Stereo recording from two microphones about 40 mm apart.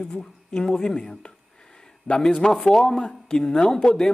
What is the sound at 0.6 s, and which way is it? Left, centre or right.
Speech, centre.